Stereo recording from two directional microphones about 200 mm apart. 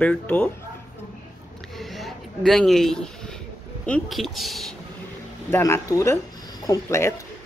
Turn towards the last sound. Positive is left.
turn(degrees=15)  # may be behind; listen again after turning